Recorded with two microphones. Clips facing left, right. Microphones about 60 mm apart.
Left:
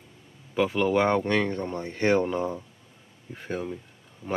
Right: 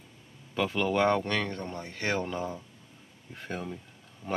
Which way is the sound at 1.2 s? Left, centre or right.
Left.